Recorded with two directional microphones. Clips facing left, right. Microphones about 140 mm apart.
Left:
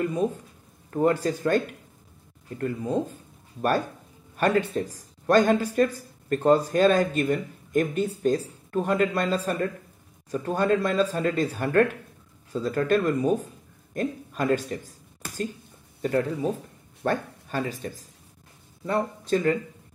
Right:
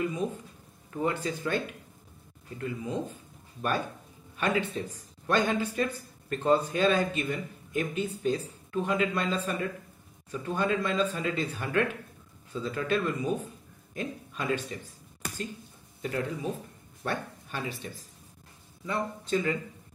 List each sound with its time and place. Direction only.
0.0 s speech: 45° left (ahead or behind)
4.4 s speech: 45° left (ahead or behind)
16.2 s speech: 30° left (ahead or behind)
17.0 s speech: 40° left (ahead or behind)